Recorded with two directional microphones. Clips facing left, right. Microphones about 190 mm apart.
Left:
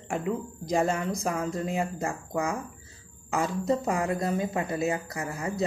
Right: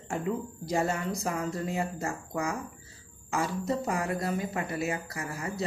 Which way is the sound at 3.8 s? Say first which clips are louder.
Left 3 dB; 20° left (ahead or behind).